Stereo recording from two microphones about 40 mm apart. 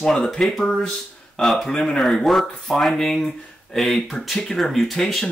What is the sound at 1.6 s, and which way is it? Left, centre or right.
Speech, centre.